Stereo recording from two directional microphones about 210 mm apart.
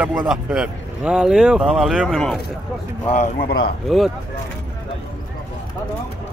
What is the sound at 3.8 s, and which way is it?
Speech, centre (ahead or behind).